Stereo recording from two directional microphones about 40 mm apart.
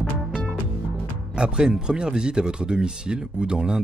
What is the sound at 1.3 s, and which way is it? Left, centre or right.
Speech, right.